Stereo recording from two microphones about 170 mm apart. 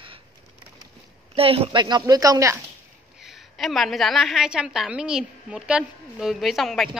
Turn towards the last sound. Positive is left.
turn(degrees=0)  # may be behind; listen again after turning